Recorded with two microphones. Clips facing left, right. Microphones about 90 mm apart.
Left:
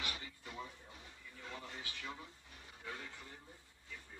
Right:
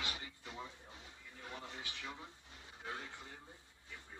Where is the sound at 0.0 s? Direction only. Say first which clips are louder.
Even; 20° right (ahead or behind).